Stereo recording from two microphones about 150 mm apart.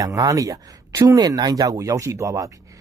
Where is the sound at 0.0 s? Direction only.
25° right (ahead or behind).